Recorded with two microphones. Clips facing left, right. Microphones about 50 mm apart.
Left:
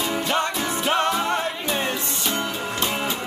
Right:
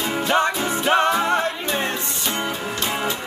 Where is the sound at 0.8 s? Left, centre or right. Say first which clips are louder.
Right 4 dB; centre.